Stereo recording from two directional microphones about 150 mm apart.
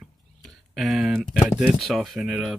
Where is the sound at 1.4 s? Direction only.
5° right (ahead or behind).